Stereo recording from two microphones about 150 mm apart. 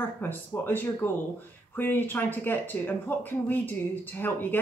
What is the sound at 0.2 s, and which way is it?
Speech, 15° left (ahead or behind).